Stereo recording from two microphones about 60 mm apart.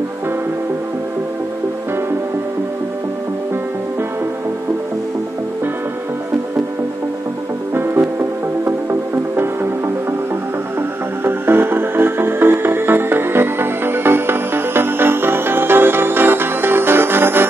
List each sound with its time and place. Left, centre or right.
7.7 s music: right
11.2 s music: right